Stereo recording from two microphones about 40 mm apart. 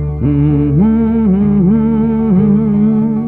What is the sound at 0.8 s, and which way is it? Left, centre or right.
Humming, right.